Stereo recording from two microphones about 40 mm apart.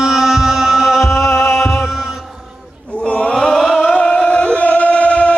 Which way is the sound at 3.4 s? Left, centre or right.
Centre.